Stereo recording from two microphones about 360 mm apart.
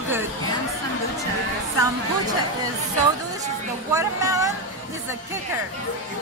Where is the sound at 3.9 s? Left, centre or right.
Centre.